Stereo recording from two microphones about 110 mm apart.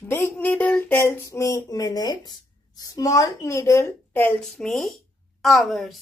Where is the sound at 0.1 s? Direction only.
20° left (ahead or behind); by 2.3 s 35° left (ahead or behind).